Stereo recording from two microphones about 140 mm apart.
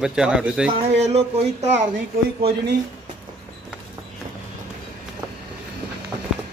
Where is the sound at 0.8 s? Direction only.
50° right (ahead or behind).